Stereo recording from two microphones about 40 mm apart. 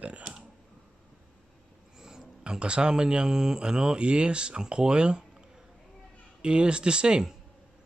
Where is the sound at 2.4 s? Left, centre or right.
Right.